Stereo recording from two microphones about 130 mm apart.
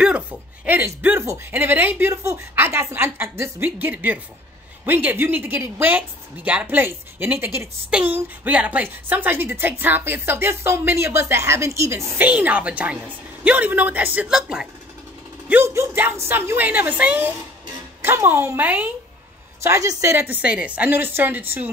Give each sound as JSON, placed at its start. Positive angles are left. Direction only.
{"t": 0.0, "sound": "a woman's voice", "side_deg": -10}
{"t": 15.4, "sound": "a woman's voice", "side_deg": -15}
{"t": 19.6, "sound": "a woman's voice", "side_deg": -25}